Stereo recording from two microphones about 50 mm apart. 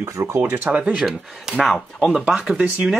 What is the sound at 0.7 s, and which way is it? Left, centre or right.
Speech, right.